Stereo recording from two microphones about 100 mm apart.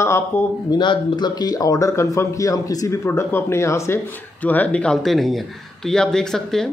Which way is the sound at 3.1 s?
25° left (ahead or behind).